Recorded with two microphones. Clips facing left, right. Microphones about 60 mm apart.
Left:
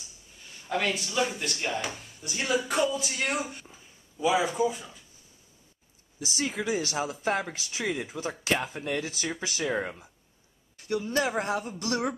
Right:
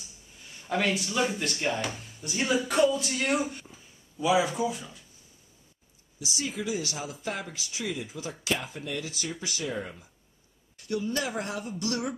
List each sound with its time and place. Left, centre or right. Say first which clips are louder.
0.7 s speech: right 1 dB; centre
6.1 s speech: left 1 dB; left
6.4 s speech: left 3 dB; left
7.4 s speech: left 3 dB; left
7.9 s speech: left 3 dB; left
8.2 s speech: left 2 dB; left
8.7 s speech: left 3 dB; left
9.8 s speech: left 4 dB; left